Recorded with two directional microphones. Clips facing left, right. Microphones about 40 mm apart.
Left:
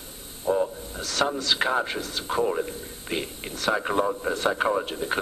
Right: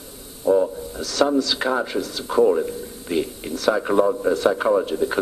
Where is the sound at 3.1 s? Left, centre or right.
Left.